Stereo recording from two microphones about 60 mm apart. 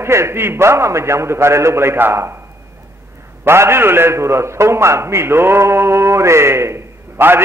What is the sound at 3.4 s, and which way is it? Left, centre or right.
A man's voice, right.